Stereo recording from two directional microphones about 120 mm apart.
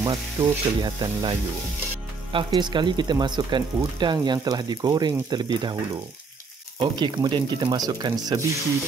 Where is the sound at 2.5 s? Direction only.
40° right (ahead or behind).